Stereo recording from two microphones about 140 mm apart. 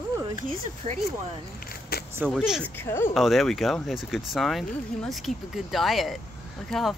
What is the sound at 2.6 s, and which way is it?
Speech, 15° left (ahead or behind).